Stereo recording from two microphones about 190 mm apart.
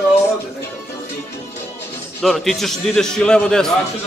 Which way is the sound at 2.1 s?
Centre (ahead or behind).